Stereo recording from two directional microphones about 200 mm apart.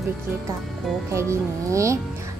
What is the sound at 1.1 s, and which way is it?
Speech, 15° right (ahead or behind).